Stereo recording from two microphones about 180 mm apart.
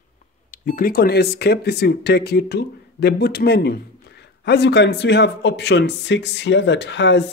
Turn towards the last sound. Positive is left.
turn(degrees=75)  # may be behind; listen again after turning